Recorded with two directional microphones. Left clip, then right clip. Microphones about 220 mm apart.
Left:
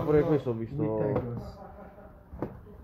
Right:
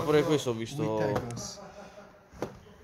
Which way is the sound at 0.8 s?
35° right (ahead or behind).